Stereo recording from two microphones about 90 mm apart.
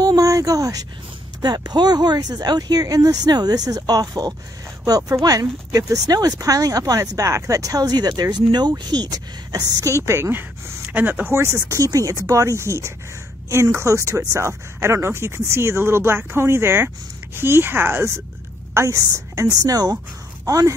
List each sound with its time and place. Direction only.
0.0 s a sound: 40° right (ahead or behind)
1.4 s speech: 50° right (ahead or behind); by 10.8 s 30° right (ahead or behind)
10.9 s speech: 20° right (ahead or behind)
11.5 s a woman's voice: 40° right (ahead or behind)